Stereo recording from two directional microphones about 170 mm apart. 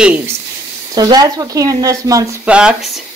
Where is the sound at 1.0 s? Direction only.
20° right (ahead or behind).